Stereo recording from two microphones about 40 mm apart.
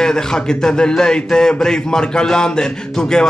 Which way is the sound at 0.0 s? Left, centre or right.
Centre.